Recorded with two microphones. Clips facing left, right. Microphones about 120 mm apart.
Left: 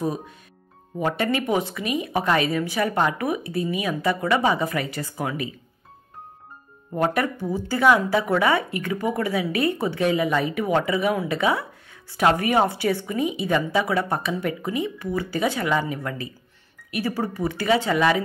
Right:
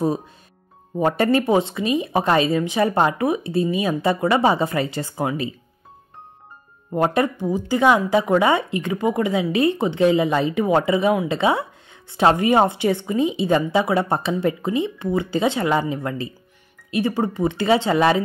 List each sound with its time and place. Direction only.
0.9 s a woman's voice: 35° right (ahead or behind)
6.9 s a woman's voice: 25° right (ahead or behind)